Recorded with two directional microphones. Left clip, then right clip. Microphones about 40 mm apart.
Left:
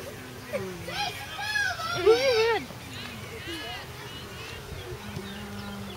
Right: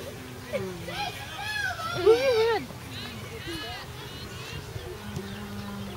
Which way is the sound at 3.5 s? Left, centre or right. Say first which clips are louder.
Even; right.